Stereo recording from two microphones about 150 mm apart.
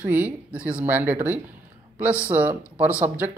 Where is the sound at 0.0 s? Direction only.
10° right (ahead or behind).